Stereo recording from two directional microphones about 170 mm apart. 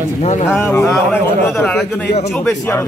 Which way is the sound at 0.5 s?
15° left (ahead or behind).